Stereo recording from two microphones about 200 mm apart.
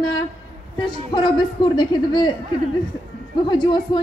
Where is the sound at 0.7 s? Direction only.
25° left (ahead or behind).